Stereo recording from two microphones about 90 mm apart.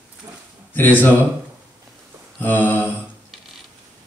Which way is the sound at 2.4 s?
20° left (ahead or behind).